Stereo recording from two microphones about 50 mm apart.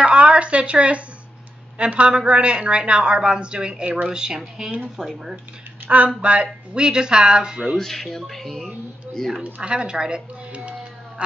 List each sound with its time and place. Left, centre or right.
0.0 s a sound: right
1.8 s speech: right
5.9 s speech: right
7.7 s speech: centre
9.4 s speech: centre
11.2 s a sound: right